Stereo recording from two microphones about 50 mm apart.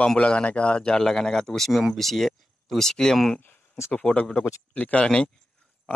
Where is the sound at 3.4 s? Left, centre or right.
Left.